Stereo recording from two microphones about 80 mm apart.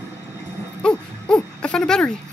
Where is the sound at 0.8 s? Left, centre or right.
Centre.